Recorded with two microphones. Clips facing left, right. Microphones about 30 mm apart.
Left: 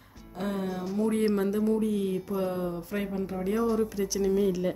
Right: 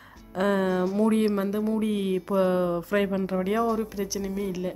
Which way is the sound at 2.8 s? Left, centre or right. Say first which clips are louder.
Right 8 dB; right.